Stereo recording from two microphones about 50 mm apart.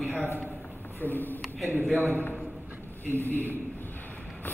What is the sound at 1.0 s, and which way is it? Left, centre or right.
Speech, left.